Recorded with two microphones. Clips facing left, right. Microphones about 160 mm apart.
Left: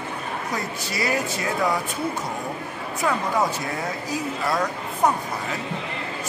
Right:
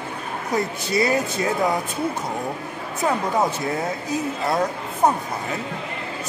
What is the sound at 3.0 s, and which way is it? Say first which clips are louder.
Speech: right 2 dB; 25° right (ahead or behind).